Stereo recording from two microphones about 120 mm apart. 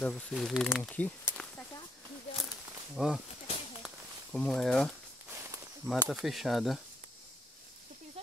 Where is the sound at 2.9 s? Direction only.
5° right (ahead or behind).